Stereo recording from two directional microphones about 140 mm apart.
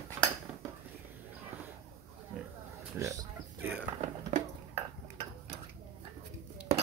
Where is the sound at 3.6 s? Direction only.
10° right (ahead or behind).